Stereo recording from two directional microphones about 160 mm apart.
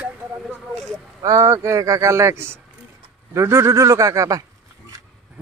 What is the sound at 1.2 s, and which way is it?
Speech, 20° right (ahead or behind).